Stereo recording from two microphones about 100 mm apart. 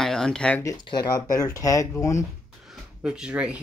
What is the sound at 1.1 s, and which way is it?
Speech, 35° left (ahead or behind).